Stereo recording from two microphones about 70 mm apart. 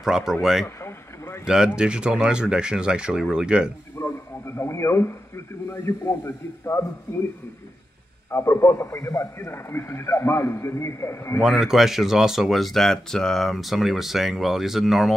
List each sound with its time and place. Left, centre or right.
0.0 s speech: centre
0.7 s a sound: left
1.4 s speech: centre
4.0 s speech: left
8.3 s a man's voice: left
11.4 s speech: centre